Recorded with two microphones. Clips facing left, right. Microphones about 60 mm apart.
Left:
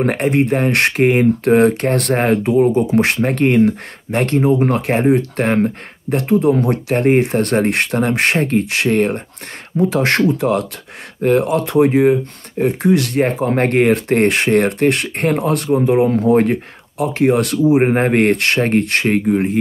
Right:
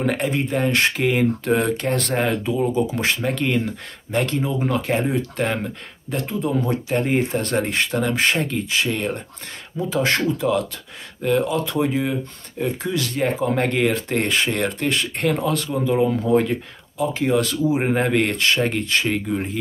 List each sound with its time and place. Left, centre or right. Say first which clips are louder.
0.0 s speech: left 7 dB; left
12.1 s speech: left 11 dB; left
17.2 s speech: left 7 dB; left